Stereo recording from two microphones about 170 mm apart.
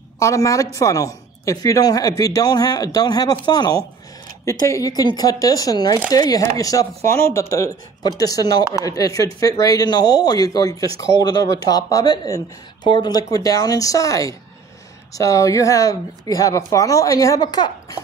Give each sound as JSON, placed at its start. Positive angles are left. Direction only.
{"t": 0.2, "sound": "a woman's voice", "side_deg": 20}